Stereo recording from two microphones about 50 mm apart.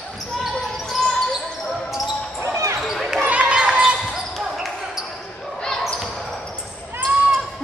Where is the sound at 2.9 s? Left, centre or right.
Centre.